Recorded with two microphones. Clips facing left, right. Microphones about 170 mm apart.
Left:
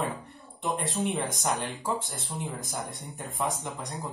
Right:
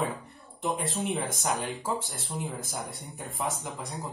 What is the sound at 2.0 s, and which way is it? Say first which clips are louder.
Speech: left 1 dB; 60° left (ahead or behind).